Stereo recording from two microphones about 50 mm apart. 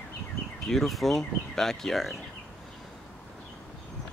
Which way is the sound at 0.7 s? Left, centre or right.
Centre.